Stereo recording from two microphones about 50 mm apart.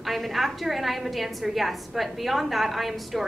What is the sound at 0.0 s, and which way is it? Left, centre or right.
A woman's voice, centre.